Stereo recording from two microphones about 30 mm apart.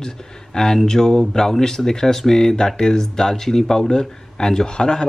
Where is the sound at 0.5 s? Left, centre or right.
Left.